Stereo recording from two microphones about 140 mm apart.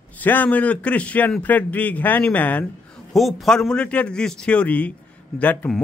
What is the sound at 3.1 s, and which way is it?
A man's voice, centre (ahead or behind).